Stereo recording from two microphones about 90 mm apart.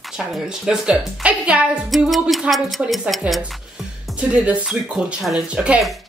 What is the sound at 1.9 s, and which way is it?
Speech, centre (ahead or behind).